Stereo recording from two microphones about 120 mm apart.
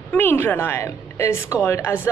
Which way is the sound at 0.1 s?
15° left (ahead or behind).